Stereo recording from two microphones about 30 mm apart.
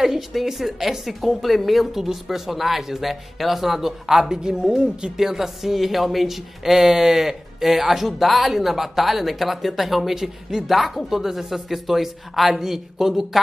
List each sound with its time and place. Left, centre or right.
0.3 s a woman's voice: centre
1.9 s a woman's voice: centre
4.3 s speech: right
5.1 s a woman's voice: centre